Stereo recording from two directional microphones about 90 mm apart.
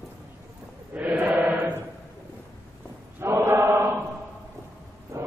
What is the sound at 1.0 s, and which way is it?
Chant, 20° right (ahead or behind).